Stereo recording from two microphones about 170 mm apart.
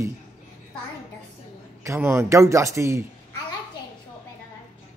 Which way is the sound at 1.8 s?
15° right (ahead or behind).